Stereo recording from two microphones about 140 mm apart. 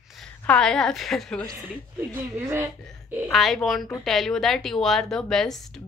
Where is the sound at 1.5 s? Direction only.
15° right (ahead or behind).